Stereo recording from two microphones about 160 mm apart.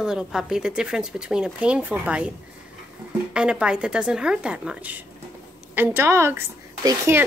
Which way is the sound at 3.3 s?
5° right (ahead or behind).